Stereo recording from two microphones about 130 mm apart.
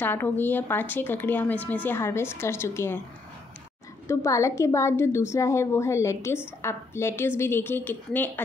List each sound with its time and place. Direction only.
0.0 s a woman's voice: 15° left (ahead or behind)
4.1 s a woman's voice: 20° left (ahead or behind)